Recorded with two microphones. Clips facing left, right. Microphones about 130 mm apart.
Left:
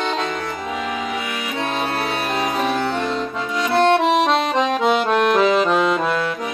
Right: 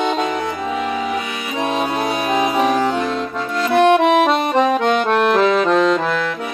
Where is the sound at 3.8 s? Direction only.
5° right (ahead or behind).